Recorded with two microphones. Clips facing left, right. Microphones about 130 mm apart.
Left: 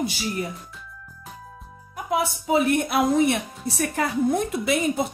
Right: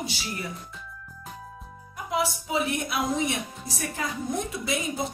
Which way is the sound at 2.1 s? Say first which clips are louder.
Left 5 dB; 55° left (ahead or behind).